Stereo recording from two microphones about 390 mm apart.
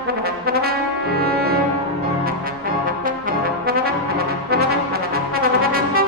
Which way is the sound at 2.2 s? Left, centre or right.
Right.